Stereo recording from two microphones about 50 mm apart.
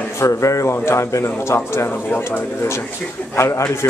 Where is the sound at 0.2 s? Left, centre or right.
Left.